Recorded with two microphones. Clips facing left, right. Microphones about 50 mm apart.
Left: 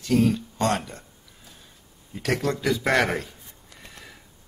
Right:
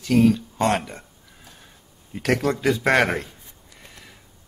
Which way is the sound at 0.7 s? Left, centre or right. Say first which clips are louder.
Right 3 dB; right.